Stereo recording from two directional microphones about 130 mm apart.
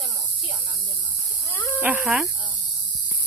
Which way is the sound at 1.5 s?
20° left (ahead or behind).